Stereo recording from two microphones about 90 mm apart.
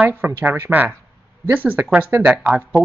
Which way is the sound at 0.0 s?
20° right (ahead or behind).